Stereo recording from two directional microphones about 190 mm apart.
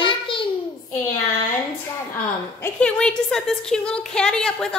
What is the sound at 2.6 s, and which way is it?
A woman's voice, 5° left (ahead or behind).